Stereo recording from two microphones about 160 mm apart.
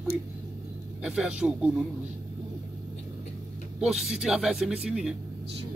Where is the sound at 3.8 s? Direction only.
5° right (ahead or behind).